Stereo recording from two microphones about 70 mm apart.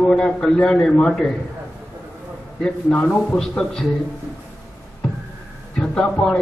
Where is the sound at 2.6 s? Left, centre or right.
Centre.